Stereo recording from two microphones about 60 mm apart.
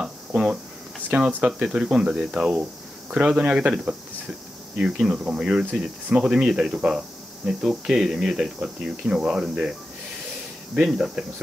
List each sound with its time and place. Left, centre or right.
0.0 s a sound: centre
1.1 s speech: right
11.0 s speech: centre